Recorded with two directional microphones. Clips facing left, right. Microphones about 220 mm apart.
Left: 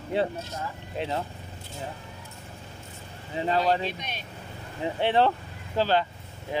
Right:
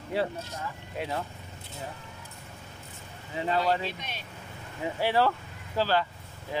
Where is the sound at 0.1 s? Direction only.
25° left (ahead or behind).